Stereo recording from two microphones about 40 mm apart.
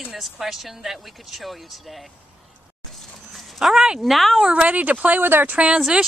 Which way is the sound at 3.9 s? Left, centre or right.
Centre.